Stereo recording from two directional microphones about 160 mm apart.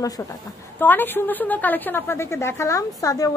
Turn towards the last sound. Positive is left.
turn(degrees=20)  # may be behind; listen again after turning